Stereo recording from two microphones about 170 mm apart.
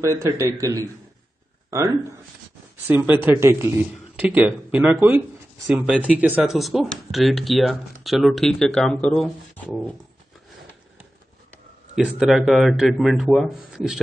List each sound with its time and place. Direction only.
0.0 s a man's voice: 15° right (ahead or behind); by 9.9 s centre (ahead or behind)
11.9 s speech: 5° right (ahead or behind)